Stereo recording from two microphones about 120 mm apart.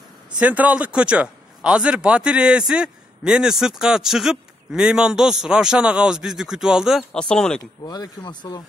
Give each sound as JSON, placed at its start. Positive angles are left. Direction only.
{"t": 0.4, "sound": "a man's voice", "side_deg": -10}
{"t": 7.0, "sound": "speech", "side_deg": 10}
{"t": 7.8, "sound": "speech", "side_deg": 35}